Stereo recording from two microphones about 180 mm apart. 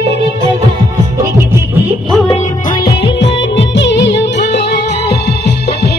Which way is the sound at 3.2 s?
80° left.